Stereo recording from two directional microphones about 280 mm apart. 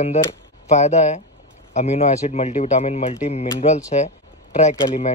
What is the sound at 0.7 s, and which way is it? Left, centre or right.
Speech, left.